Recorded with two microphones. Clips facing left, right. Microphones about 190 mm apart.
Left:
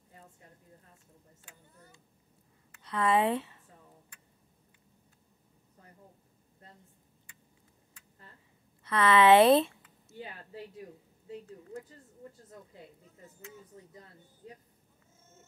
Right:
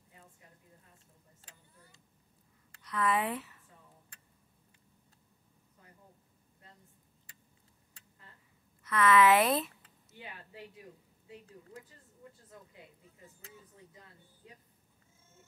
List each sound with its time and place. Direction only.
2.8 s speech: 30° left (ahead or behind)
8.8 s speech: 30° left (ahead or behind)
10.0 s a sound: 35° left (ahead or behind)
13.5 s speech: 35° left (ahead or behind)